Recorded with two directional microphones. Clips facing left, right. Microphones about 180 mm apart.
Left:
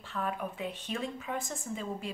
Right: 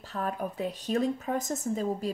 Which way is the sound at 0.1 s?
40° right (ahead or behind).